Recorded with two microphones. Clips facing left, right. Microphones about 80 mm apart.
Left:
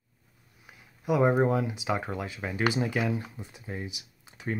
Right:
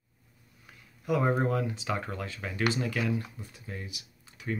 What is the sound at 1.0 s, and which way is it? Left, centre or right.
Speech, centre.